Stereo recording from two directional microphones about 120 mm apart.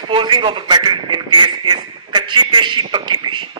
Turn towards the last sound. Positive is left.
turn(degrees=-40)  # may be behind; listen again after turning